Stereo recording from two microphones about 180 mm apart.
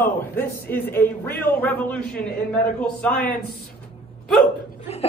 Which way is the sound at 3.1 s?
55° left (ahead or behind).